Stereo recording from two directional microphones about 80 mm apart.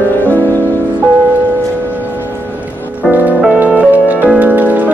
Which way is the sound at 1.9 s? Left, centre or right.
Right.